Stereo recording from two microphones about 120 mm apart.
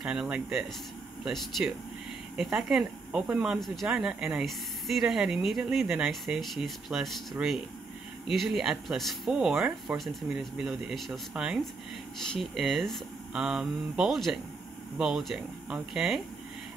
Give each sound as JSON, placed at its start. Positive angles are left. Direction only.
{"t": 0.0, "sound": "speech", "side_deg": -5}
{"t": 3.5, "sound": "speech", "side_deg": 0}